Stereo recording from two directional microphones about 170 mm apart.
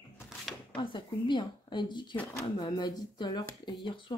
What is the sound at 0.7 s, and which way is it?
Speech, 30° left (ahead or behind).